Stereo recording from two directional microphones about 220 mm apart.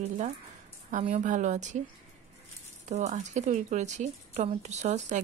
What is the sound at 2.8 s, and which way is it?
Speech, 30° right (ahead or behind).